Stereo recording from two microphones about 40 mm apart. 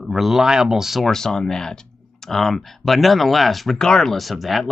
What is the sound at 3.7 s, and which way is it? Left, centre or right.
Speech, centre.